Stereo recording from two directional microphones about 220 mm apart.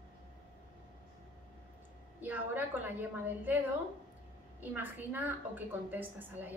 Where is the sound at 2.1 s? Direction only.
10° right (ahead or behind).